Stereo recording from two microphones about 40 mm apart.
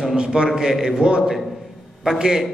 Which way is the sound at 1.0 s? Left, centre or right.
Right.